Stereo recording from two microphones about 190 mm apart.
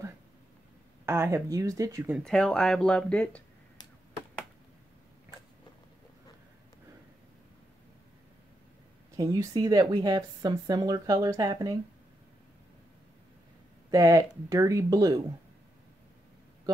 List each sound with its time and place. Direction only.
1.0 s speech: 15° right (ahead or behind)
2.1 s speech: 5° left (ahead or behind)
9.1 s speech: 20° right (ahead or behind)
13.8 s speech: 20° right (ahead or behind)